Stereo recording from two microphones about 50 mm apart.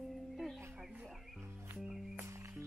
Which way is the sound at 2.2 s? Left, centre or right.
Right.